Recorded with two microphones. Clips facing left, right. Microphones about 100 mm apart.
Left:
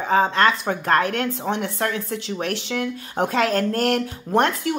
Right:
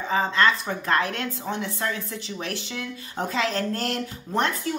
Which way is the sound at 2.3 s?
60° left (ahead or behind).